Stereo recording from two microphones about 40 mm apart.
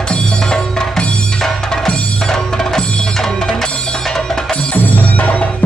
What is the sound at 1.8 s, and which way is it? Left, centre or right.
Music, centre.